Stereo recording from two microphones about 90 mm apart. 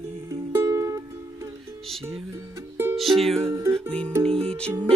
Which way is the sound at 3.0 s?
Centre (ahead or behind).